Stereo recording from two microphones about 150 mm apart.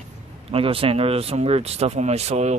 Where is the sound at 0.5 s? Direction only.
40° right (ahead or behind).